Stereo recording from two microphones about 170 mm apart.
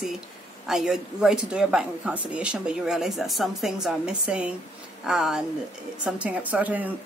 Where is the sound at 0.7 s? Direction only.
Centre (ahead or behind).